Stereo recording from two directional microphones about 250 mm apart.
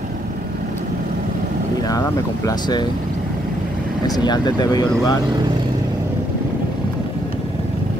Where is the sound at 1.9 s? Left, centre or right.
Centre.